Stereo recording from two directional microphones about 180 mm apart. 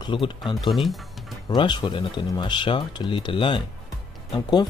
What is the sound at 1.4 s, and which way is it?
Speech, 25° left (ahead or behind).